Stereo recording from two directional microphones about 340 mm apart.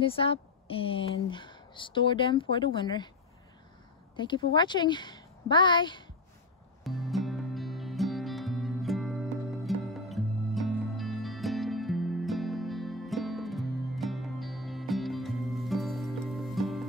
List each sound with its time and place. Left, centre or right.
0.0 s a woman's voice: centre
4.2 s a woman's voice: centre
6.8 s music: centre